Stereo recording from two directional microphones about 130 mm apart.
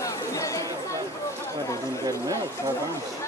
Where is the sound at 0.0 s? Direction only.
25° left (ahead or behind).